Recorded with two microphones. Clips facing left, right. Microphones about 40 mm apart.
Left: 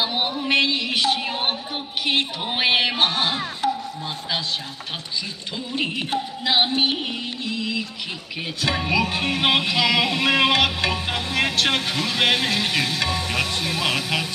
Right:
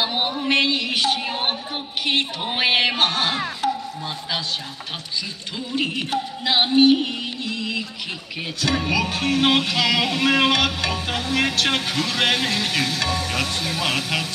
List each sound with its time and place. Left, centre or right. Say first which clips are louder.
0.0 s a sound: right 1 dB; centre
0.5 s a woman's voice: even; centre
2.0 s music: even; centre
6.1 s music: even; centre
6.8 s music: right 7 dB; centre